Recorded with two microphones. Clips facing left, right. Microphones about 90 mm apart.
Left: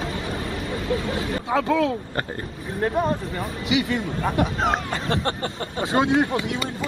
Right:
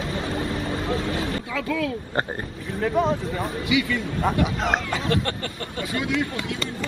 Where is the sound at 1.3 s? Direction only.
25° left (ahead or behind).